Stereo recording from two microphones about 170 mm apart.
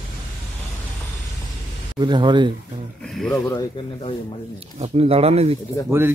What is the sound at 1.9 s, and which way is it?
Speech, 25° right (ahead or behind).